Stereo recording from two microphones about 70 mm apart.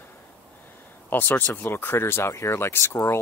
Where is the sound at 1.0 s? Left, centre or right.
Left.